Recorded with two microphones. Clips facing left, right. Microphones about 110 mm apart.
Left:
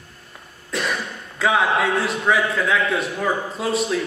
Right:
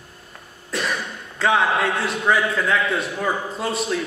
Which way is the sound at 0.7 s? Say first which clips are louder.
Even; centre (ahead or behind).